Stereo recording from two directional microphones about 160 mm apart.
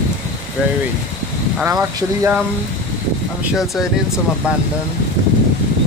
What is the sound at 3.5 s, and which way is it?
Speech, 5° right (ahead or behind).